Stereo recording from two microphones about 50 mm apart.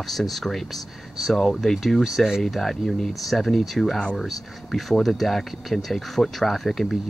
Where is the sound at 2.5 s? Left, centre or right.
Centre.